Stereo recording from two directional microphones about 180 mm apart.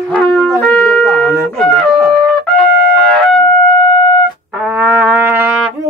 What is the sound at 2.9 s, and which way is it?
Wind instrument, 5° left (ahead or behind).